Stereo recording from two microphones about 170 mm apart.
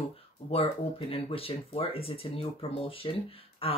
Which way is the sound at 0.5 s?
35° left (ahead or behind).